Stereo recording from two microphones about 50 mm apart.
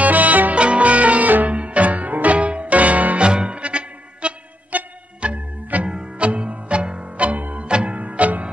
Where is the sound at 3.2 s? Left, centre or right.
Centre.